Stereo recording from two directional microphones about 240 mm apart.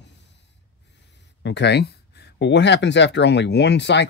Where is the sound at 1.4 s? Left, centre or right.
Left.